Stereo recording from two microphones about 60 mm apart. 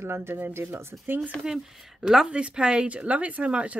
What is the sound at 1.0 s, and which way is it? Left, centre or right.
Speech, right.